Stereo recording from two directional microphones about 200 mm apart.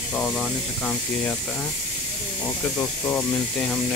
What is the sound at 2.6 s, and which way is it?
Speech, 5° left (ahead or behind).